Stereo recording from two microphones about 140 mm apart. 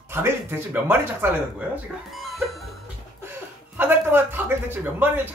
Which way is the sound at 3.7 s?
15° right (ahead or behind).